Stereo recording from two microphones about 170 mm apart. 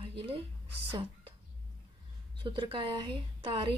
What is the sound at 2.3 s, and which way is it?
A woman's voice, 30° right (ahead or behind).